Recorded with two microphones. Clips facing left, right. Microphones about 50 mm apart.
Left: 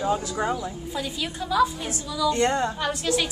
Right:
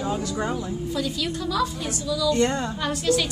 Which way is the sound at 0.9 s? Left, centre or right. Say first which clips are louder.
Right 3 dB; left.